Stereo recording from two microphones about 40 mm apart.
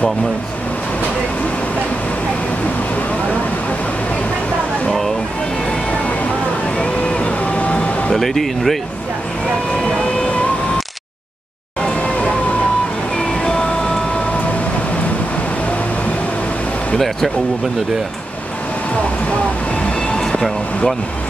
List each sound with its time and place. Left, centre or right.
7.1 s a sound: left
8.1 s speech: centre
13.2 s music: centre
20.2 s train: centre